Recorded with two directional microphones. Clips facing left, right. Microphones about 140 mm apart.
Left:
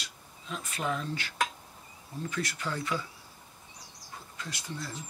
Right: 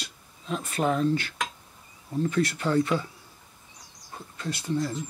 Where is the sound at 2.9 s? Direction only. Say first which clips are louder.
Right 7 dB; 25° right (ahead or behind).